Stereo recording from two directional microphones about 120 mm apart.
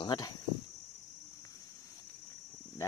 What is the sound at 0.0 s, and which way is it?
Speech, 35° left (ahead or behind).